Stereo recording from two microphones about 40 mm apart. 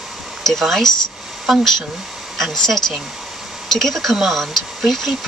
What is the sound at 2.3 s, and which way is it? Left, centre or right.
Speech, centre.